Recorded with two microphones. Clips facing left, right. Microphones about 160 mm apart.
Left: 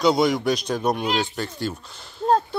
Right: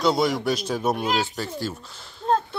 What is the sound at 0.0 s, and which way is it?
Speech, centre (ahead or behind).